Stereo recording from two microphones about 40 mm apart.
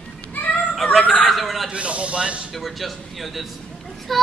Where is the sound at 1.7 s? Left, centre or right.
Right.